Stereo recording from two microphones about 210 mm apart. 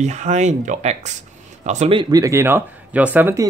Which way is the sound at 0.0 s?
35° right (ahead or behind).